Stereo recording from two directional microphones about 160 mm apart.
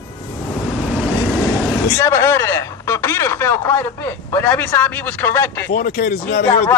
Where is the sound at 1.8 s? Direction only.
15° left (ahead or behind).